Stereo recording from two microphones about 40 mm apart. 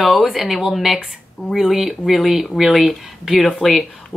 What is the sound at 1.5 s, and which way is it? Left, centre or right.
Speech, centre.